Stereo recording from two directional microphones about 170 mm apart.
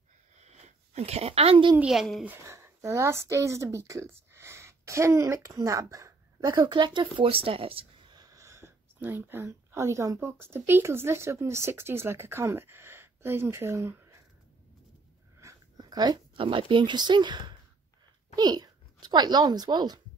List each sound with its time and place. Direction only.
0.4 s a sound: 40° right (ahead or behind)
1.8 s speech: centre (ahead or behind)
2.2 s speech: 15° right (ahead or behind)
15.4 s a child's voice: 25° right (ahead or behind)